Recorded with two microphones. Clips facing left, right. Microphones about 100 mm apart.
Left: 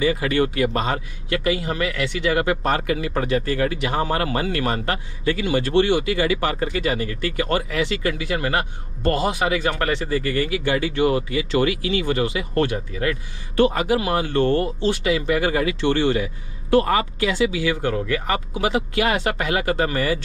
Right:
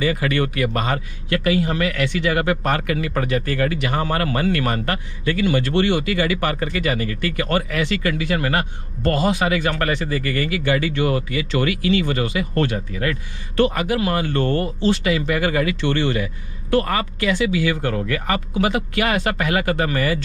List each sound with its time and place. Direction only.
0.0 s a man's voice: 25° left (ahead or behind)